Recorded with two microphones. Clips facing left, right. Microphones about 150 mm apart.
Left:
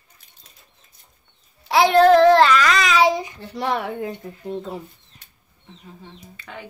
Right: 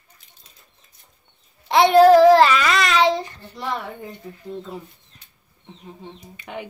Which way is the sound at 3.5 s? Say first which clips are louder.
Left 5 dB; 75° left (ahead or behind).